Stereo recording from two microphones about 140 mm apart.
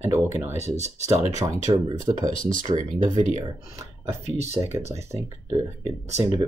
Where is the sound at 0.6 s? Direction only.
50° left (ahead or behind).